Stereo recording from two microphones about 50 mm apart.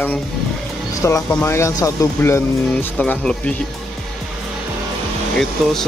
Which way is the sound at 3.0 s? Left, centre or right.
Left.